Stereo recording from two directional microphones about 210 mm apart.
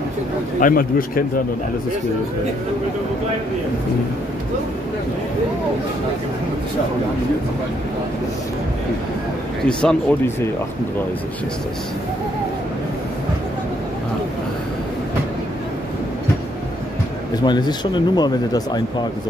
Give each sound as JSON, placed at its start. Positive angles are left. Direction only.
{"t": 0.6, "sound": "a man's voice", "side_deg": 40}
{"t": 9.7, "sound": "speech", "side_deg": 5}
{"t": 17.5, "sound": "speech", "side_deg": 20}